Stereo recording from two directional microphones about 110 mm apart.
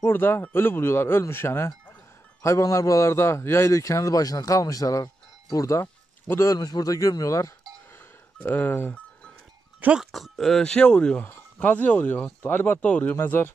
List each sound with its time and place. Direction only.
0.0 s a man's voice: 20° left (ahead or behind)
8.4 s speech: 15° left (ahead or behind)
9.8 s speech: 15° right (ahead or behind)
10.1 s speech: centre (ahead or behind); by 13.5 s 20° left (ahead or behind)